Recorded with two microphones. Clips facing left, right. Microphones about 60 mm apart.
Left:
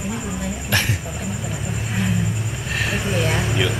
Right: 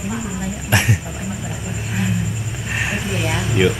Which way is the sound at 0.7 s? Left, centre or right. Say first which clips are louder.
Right 4 dB; centre.